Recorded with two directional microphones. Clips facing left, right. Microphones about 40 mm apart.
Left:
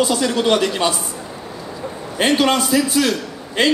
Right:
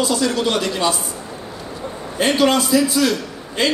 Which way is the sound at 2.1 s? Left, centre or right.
Left.